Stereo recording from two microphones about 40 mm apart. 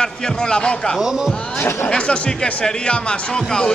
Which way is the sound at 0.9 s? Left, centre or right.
Centre.